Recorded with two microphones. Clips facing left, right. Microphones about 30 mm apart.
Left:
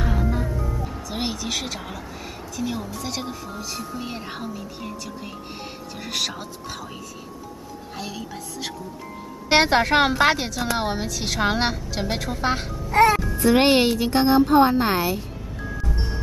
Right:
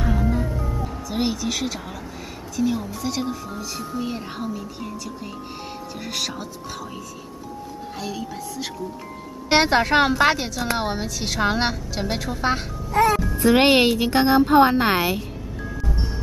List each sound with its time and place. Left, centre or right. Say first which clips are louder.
0.0 s music: right 2 dB; centre
0.5 s music: right 1 dB; centre
1.1 s a sound: right 3 dB; centre
2.5 s speech: right 5 dB; centre
8.0 s speech: right 3 dB; centre
12.9 s a child's voice: left 2 dB; left
13.2 s music: right 1 dB; centre
13.5 s speech: right 1 dB; centre
15.6 s music: even; centre